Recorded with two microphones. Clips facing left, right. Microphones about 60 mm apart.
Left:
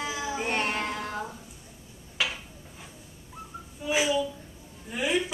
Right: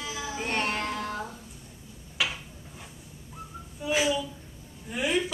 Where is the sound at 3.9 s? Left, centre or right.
Centre.